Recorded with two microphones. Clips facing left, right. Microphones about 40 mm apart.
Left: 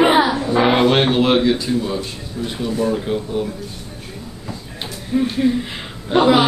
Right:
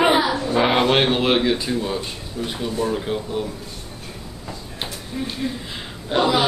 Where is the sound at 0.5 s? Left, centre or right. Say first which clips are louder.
Left 3 dB; centre.